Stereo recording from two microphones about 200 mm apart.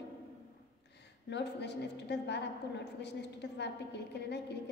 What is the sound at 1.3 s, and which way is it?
A woman's voice, 60° left (ahead or behind).